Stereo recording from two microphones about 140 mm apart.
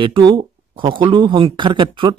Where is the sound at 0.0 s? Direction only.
35° right (ahead or behind).